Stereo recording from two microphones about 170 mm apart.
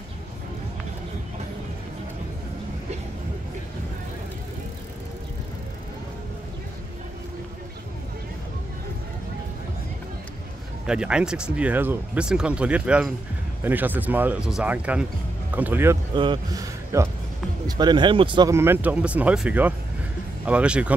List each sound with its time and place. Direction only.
10.9 s speech: 5° right (ahead or behind)
16.2 s speech: 30° right (ahead or behind)
16.9 s speech: 15° right (ahead or behind)
18.5 s speech: 15° right (ahead or behind)